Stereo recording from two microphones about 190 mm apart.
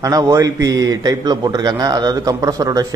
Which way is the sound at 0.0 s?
20° right (ahead or behind).